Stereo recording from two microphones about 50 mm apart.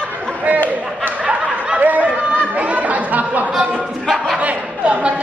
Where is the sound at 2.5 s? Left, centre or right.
Right.